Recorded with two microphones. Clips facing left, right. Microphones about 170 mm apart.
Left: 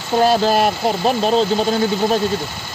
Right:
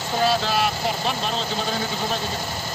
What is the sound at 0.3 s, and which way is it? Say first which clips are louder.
Speech: left 7 dB; 45° left (ahead or behind).